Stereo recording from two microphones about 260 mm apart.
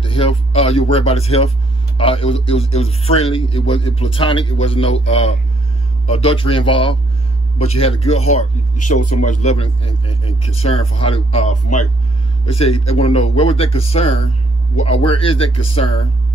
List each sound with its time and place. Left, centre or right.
0.0 s a man's voice: left
6.0 s a man's voice: left